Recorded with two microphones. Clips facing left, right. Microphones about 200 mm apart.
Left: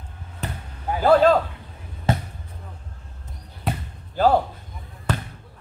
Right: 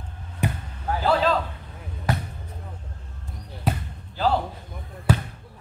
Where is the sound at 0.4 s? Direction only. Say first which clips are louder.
Right 5 dB; 15° right (ahead or behind).